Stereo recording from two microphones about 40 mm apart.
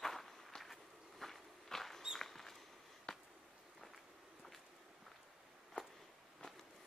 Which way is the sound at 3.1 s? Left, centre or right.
Centre.